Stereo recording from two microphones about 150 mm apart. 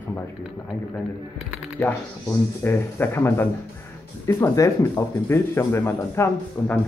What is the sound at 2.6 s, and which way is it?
Speech, 15° left (ahead or behind).